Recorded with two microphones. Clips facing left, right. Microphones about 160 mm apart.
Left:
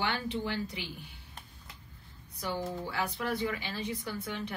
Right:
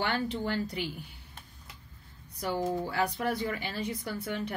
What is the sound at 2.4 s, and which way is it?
Speech, 40° right (ahead or behind).